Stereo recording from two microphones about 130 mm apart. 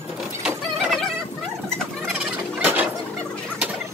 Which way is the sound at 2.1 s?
10° right (ahead or behind).